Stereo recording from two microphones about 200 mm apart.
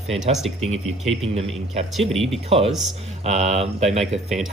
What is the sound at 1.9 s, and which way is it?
Speech, centre (ahead or behind).